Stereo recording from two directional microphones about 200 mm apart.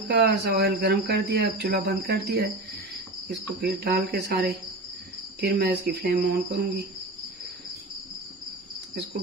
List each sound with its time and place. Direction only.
0.1 s speech: 55° right (ahead or behind)